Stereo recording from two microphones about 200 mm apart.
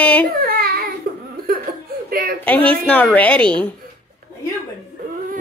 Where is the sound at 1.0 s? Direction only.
50° right (ahead or behind).